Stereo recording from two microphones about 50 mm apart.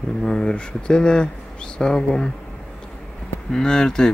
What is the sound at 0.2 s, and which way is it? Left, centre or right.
Speech, centre.